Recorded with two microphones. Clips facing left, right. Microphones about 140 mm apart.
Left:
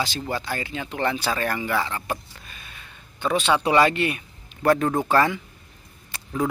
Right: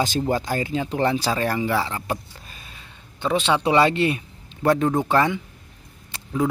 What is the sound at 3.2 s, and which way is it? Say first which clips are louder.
A man's voice: right 1 dB; 20° right (ahead or behind).